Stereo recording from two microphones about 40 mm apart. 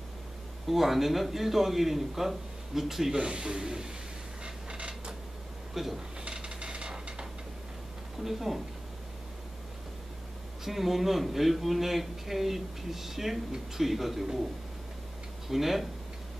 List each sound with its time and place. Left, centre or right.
0.7 s a man's voice: centre
3.2 s speech: centre
4.6 s creak: right
5.8 s speech: centre
6.2 s a sound: right
8.2 s speech: centre
10.6 s a man's voice: centre
15.4 s a man's voice: centre